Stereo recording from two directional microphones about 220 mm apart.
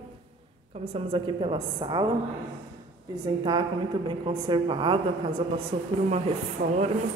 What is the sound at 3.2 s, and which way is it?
A woman's voice, 20° right (ahead or behind).